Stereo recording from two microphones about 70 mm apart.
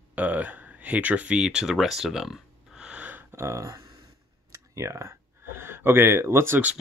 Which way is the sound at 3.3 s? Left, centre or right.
Right.